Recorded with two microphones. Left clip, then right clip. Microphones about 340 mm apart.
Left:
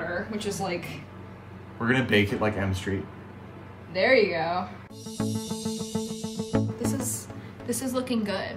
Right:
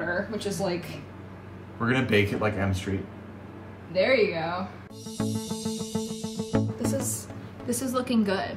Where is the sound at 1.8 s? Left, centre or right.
Centre.